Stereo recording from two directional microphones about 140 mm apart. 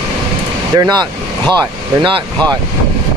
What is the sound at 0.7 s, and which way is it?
Speech, 30° right (ahead or behind).